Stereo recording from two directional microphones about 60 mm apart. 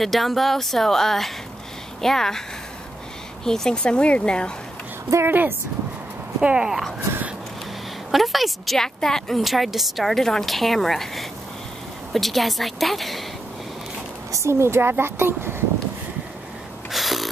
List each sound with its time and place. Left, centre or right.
0.0 s a woman's voice: centre
3.4 s speech: centre
5.2 s speech: right
6.4 s speech: centre
8.1 s a woman's voice: centre
9.4 s a woman's voice: centre
14.3 s speech: right
16.9 s a sound: centre